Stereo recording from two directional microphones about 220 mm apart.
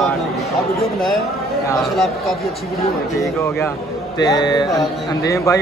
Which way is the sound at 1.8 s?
Centre (ahead or behind).